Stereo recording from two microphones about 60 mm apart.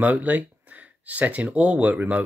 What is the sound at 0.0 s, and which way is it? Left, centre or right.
Speech, right.